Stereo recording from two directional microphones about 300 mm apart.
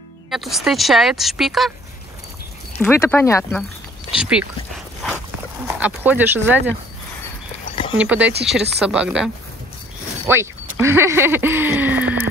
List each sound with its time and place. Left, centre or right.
0.3 s speech: centre
2.8 s speech: centre
4.2 s speech: centre
8.0 s speech: centre